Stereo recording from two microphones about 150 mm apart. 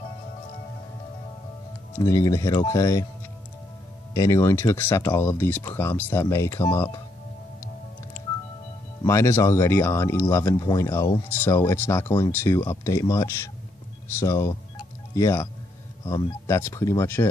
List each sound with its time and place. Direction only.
2.0 s speech: 25° left (ahead or behind)
4.1 s speech: 20° left (ahead or behind)
9.0 s speech: 20° left (ahead or behind)